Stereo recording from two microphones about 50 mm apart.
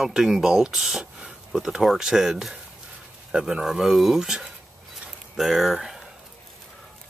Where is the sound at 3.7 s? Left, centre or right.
Centre.